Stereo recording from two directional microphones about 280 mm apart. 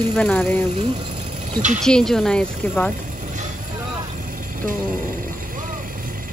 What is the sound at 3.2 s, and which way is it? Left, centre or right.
Vehicle, right.